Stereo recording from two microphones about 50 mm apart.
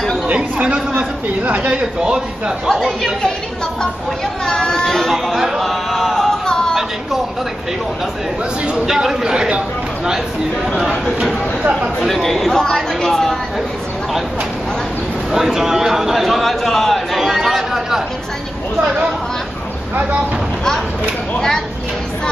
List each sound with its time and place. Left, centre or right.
0.3 s speech: right; by 3.1 s centre
4.5 s speech: centre
5.1 s music: centre
8.8 s a man's voice: centre
10.7 s speech: centre
15.3 s a man's voice: centre